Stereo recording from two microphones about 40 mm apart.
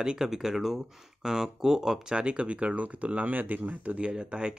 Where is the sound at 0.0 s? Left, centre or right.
Centre.